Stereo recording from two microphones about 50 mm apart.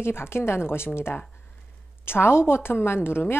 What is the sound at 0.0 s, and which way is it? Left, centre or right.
A woman's voice, left.